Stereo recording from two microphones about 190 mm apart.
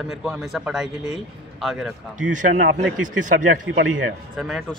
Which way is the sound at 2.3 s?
40° right (ahead or behind).